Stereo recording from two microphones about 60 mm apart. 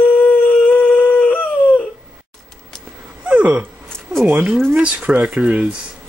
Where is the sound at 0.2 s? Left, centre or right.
Left.